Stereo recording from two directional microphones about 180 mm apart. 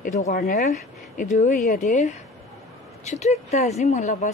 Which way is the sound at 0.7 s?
40° left (ahead or behind).